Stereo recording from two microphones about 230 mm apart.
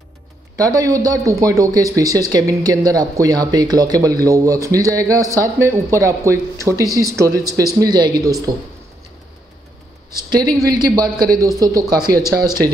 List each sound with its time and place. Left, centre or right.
0.6 s speech: centre
10.1 s speech: centre